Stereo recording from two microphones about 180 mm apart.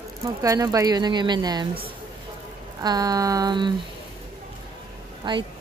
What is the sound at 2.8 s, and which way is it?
Speech, 20° right (ahead or behind).